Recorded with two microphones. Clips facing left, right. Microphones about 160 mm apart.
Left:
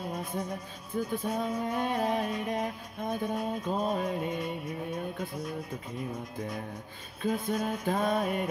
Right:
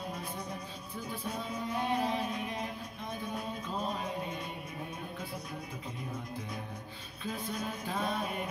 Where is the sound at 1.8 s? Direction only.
50° left (ahead or behind).